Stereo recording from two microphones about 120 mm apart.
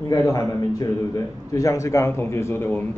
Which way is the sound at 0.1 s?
30° left (ahead or behind).